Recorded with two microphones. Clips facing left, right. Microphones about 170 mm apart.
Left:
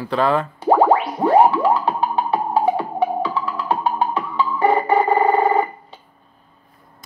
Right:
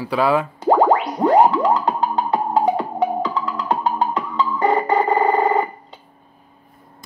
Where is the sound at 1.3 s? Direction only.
20° right (ahead or behind).